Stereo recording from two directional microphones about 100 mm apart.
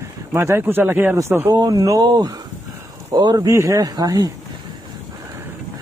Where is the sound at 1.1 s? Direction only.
25° right (ahead or behind).